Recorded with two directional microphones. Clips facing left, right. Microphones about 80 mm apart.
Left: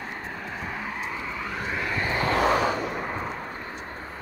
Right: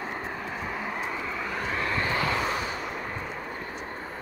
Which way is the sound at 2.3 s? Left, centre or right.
Left.